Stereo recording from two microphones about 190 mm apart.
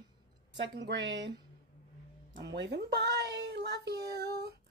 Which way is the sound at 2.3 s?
70° right (ahead or behind).